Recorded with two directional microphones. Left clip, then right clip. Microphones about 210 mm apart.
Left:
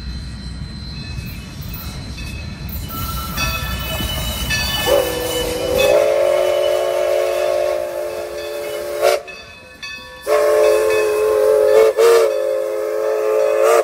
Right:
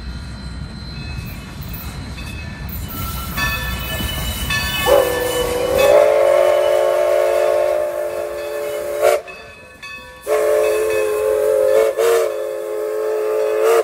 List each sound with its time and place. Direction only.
3.0 s train: 15° right (ahead or behind)
10.2 s train: 5° left (ahead or behind)
13.0 s vehicle: 30° left (ahead or behind)